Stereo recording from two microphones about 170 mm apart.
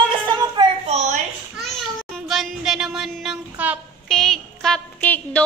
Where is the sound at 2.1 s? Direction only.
Centre (ahead or behind).